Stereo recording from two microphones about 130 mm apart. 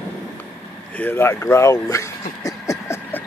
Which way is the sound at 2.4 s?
25° left (ahead or behind).